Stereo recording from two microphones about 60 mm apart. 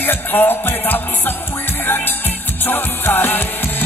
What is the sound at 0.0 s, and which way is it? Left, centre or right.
Music, left.